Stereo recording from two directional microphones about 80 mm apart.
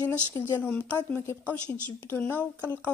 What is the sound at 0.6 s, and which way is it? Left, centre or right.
A woman's voice, centre.